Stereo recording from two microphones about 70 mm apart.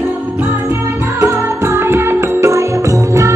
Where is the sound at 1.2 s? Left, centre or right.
Right.